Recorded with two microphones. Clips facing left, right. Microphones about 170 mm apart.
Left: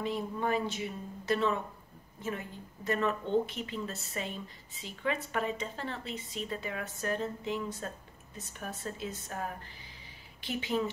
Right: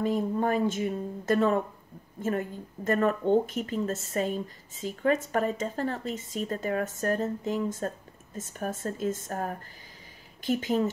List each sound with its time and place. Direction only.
0.0 s a woman's voice: 45° right (ahead or behind)